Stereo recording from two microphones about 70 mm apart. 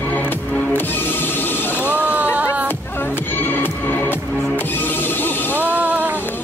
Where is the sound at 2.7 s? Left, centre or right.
Left.